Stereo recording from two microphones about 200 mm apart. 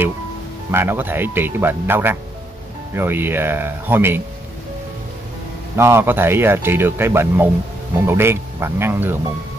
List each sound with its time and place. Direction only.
0.7 s speech: 10° right (ahead or behind)
5.8 s speech: 10° right (ahead or behind)